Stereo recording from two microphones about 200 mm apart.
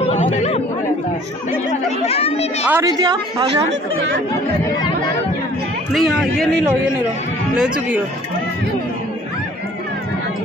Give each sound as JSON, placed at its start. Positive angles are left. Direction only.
{"t": 0.1, "sound": "chatter", "side_deg": 35}
{"t": 2.0, "sound": "speech", "side_deg": 30}
{"t": 2.7, "sound": "a woman's voice", "side_deg": -20}
{"t": 5.9, "sound": "speech", "side_deg": 0}
{"t": 7.5, "sound": "speech", "side_deg": -5}